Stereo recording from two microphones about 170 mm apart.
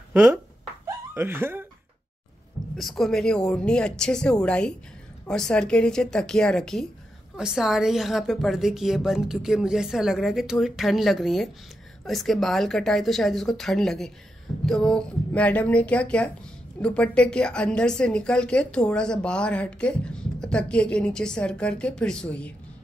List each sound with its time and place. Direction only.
0.1 s speech: 10° right (ahead or behind)
0.8 s laughter: 10° right (ahead or behind)
2.8 s a woman's voice: centre (ahead or behind)